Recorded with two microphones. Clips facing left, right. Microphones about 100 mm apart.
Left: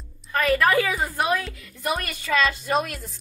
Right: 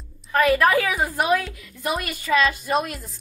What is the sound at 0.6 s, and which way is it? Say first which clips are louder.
Speech: right 1 dB; 15° right (ahead or behind).